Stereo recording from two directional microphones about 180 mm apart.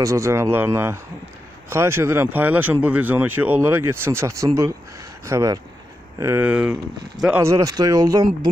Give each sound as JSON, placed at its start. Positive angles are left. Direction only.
{"t": 0.0, "sound": "speech", "side_deg": -15}